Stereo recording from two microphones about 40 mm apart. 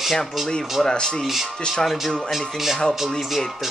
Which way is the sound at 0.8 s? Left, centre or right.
Centre.